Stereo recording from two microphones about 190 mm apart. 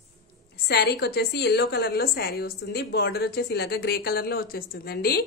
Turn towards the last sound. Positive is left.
turn(degrees=55)  # may be behind; listen again after turning